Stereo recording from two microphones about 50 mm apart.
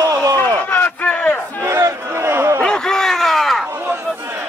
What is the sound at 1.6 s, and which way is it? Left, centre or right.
Crowd, right.